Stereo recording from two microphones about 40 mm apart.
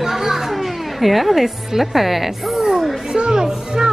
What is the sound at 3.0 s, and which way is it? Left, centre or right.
Music, centre.